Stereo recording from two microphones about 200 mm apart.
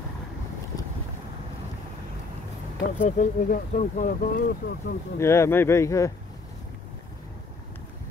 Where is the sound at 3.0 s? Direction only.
40° left (ahead or behind).